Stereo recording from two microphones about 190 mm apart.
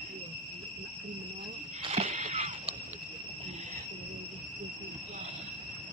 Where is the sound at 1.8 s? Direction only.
30° right (ahead or behind).